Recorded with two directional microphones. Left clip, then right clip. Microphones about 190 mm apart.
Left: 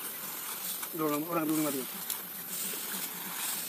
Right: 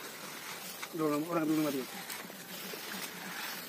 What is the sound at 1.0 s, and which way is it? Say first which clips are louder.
Speech: left 1 dB; centre (ahead or behind).